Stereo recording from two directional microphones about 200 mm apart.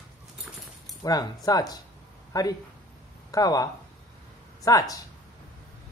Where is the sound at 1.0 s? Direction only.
20° left (ahead or behind).